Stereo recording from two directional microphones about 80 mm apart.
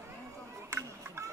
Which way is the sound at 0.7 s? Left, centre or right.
Right.